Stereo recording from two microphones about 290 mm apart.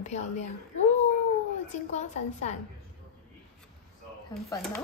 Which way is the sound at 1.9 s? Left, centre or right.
Left.